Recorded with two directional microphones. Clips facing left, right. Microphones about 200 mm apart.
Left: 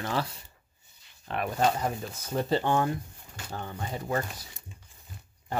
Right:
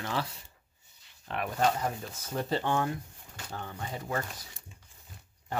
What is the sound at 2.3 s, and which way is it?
Speech, 25° left (ahead or behind).